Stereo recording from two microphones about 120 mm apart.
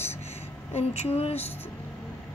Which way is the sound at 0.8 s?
55° left (ahead or behind).